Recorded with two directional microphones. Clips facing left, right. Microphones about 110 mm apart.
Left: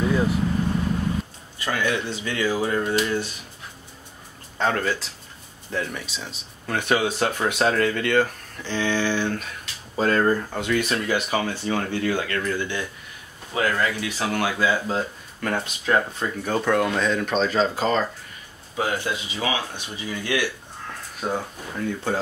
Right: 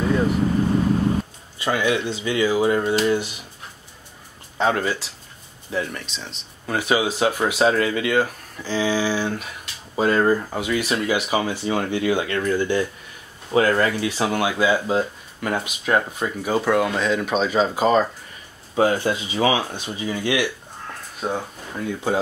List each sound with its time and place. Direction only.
0.1 s vehicle: 5° left (ahead or behind)
1.6 s speech: 20° right (ahead or behind)
4.6 s speech: 10° right (ahead or behind)
18.8 s speech: 30° right (ahead or behind)
20.1 s speech: 20° right (ahead or behind)
21.2 s speech: 5° right (ahead or behind)